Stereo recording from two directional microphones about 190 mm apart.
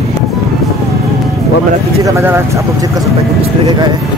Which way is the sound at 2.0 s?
15° right (ahead or behind).